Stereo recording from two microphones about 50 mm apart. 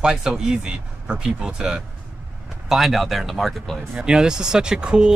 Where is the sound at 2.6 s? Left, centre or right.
Centre.